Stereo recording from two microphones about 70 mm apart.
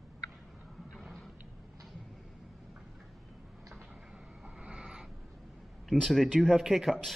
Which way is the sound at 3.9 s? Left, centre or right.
Centre.